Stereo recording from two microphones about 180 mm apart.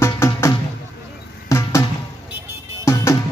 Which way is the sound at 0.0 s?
15° left (ahead or behind).